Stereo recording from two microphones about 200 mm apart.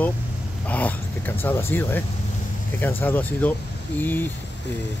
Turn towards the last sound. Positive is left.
turn(degrees=10)  # may be behind; listen again after turning